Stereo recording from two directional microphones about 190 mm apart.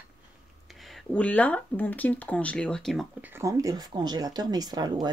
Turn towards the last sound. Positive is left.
turn(degrees=-20)  # may be behind; listen again after turning